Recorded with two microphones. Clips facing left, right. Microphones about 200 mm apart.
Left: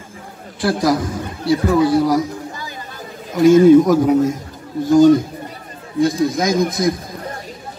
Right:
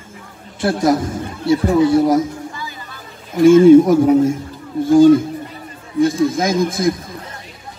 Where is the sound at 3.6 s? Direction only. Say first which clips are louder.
Right 2 dB; 25° right (ahead or behind).